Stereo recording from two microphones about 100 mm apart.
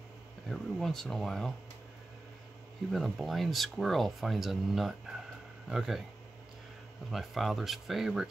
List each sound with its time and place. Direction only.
0.5 s speech: 5° left (ahead or behind)
2.9 s speech: centre (ahead or behind)
7.1 s speech: centre (ahead or behind)